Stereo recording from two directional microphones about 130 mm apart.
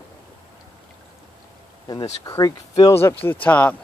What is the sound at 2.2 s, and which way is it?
Speech, 25° left (ahead or behind).